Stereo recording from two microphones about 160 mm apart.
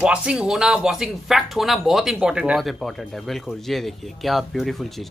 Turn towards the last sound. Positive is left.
turn(degrees=0)  # may be behind; listen again after turning